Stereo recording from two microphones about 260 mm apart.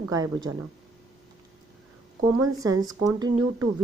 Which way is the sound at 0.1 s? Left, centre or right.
Centre.